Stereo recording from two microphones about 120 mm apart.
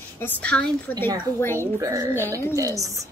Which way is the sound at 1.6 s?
25° right (ahead or behind).